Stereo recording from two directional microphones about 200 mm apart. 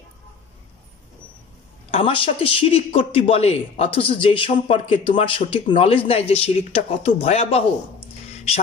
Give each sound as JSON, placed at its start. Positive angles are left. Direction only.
{"t": 1.9, "sound": "a man's voice", "side_deg": 30}